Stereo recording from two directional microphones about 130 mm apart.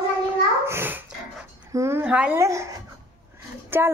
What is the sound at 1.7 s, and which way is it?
Speech, 20° right (ahead or behind).